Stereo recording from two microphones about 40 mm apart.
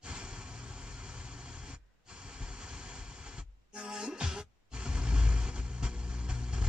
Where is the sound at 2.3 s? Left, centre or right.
Right.